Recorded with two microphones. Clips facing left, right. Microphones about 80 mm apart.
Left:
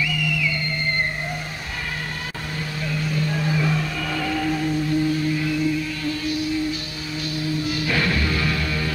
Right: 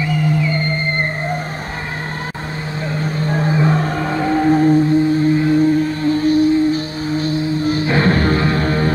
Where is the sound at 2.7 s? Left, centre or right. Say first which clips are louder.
Right 4 dB; right.